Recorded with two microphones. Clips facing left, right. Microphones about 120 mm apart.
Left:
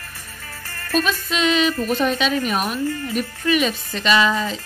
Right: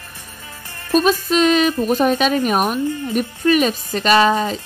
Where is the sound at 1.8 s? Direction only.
45° right (ahead or behind).